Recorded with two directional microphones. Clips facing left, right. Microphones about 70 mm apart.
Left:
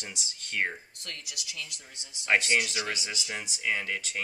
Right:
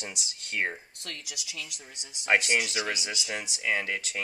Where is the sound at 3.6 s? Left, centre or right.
Right.